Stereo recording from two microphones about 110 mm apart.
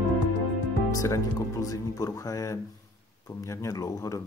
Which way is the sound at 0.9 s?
30° left (ahead or behind).